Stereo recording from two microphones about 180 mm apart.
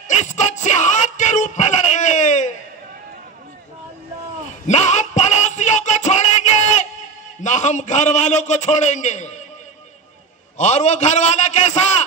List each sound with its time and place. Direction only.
0.1 s music: 40° left (ahead or behind)
4.6 s music: 40° left (ahead or behind)
7.4 s a man's voice: 40° left (ahead or behind)
10.6 s a man's voice: 40° left (ahead or behind)